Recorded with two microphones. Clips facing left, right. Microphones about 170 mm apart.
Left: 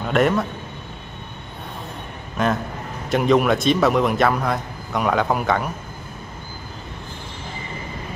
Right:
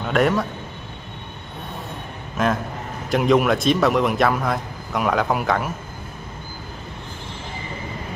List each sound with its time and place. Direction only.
0.0 s a man's voice: centre (ahead or behind)
2.3 s a man's voice: centre (ahead or behind)